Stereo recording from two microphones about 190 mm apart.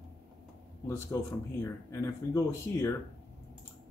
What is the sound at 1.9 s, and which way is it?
Speech, 15° left (ahead or behind).